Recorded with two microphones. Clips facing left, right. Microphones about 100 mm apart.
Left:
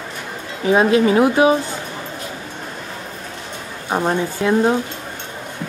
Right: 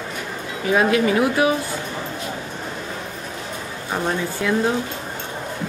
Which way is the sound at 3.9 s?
25° left (ahead or behind).